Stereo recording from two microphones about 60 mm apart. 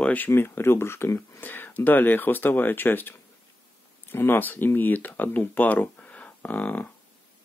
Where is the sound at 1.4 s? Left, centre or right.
Left.